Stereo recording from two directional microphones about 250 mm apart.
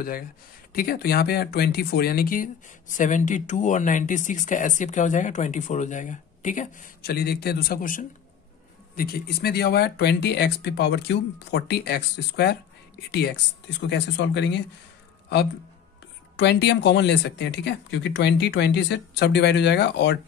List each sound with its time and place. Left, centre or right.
0.7 s speech: left
16.3 s speech: left